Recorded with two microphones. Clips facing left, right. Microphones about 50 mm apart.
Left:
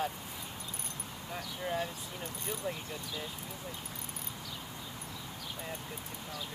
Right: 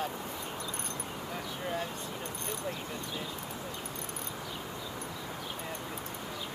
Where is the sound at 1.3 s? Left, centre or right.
Centre.